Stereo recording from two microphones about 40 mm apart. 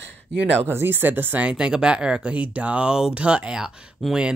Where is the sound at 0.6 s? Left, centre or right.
Right.